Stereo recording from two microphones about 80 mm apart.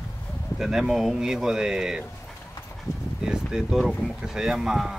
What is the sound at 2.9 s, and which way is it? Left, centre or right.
Speech, left.